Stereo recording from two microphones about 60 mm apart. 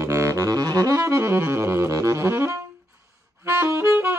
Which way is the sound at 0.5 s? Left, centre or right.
Right.